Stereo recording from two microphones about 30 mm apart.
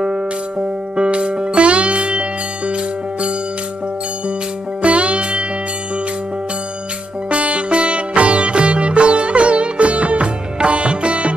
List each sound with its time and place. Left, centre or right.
0.9 s music: right
4.8 s music: right
7.2 s sitar: right